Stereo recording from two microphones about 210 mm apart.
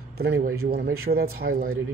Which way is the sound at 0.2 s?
50° right (ahead or behind).